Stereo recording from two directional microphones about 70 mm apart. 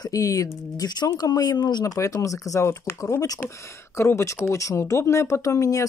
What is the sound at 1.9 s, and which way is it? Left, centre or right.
Speech, left.